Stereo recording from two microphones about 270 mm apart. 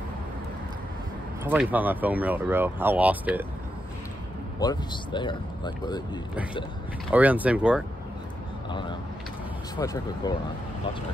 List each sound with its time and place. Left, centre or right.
1.4 s speech: centre
4.6 s speech: centre
7.1 s speech: centre
8.6 s vehicle: centre
9.8 s speech: centre